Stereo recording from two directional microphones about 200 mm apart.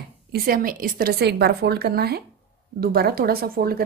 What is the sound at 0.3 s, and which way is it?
Speech, 45° right (ahead or behind).